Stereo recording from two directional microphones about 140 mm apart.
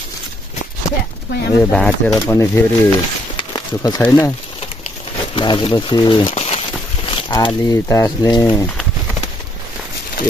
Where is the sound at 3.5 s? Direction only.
25° left (ahead or behind).